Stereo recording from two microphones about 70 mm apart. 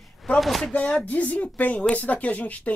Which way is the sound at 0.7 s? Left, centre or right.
Centre.